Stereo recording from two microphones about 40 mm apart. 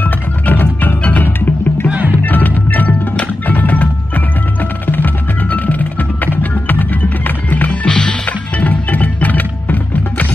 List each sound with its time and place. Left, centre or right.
0.0 s music: left
7.8 s music: left
8.3 s music: left